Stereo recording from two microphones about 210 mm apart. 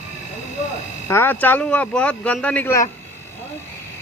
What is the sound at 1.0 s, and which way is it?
Speech, 10° left (ahead or behind).